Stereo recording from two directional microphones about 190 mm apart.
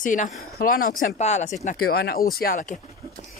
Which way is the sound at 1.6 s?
50° left (ahead or behind).